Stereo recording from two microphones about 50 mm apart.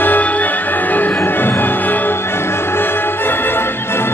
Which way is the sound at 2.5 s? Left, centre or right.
Left.